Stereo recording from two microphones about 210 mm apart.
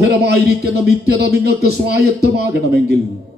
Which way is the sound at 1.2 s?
50° right (ahead or behind).